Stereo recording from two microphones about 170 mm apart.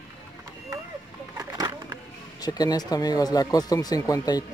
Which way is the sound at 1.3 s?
20° right (ahead or behind).